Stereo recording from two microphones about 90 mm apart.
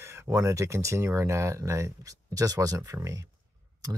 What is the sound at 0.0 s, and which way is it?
Speech, 30° right (ahead or behind).